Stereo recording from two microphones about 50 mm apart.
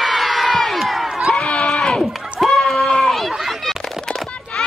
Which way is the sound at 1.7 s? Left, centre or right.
Centre.